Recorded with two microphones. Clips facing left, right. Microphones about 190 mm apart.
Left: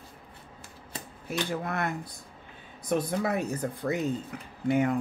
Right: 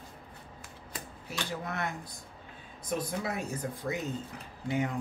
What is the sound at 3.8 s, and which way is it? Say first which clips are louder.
Speech: left 7 dB; 60° left (ahead or behind).